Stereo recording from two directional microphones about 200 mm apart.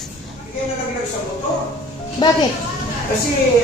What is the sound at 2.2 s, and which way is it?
Speech, 20° left (ahead or behind).